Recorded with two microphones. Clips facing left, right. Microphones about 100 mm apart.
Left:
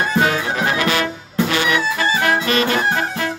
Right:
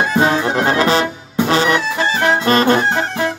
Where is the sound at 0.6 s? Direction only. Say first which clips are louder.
Right 5 dB; 30° right (ahead or behind).